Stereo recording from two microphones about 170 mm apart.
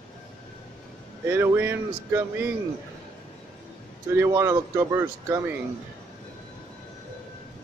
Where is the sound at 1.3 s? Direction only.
15° right (ahead or behind).